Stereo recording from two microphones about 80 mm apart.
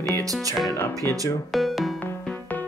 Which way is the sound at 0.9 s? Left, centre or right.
Right.